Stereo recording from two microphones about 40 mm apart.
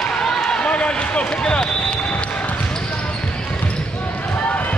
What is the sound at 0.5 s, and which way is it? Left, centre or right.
Run, left.